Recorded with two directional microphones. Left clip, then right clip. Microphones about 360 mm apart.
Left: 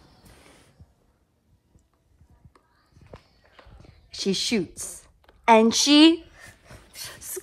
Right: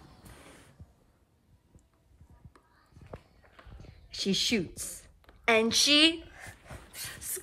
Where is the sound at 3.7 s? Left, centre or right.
Centre.